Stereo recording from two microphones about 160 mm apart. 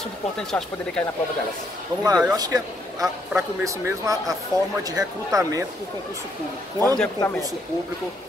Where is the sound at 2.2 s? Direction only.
25° right (ahead or behind).